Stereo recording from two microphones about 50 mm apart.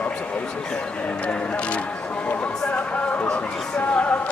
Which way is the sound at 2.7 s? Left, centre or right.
Left.